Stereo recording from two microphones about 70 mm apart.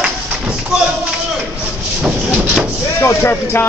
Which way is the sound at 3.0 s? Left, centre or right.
Left.